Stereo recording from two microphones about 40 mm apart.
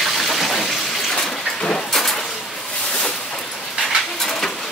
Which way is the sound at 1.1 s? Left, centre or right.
Centre.